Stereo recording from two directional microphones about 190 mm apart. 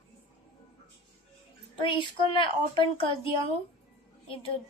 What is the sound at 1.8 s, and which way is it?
A woman's voice, 25° left (ahead or behind).